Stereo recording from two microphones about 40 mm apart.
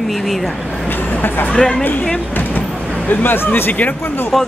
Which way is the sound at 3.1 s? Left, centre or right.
Left.